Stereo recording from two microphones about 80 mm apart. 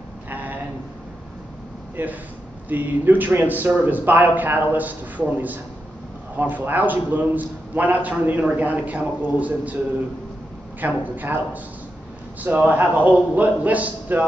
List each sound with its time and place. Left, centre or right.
0.3 s a sound: right
2.0 s a man's voice: right
10.8 s a man's voice: right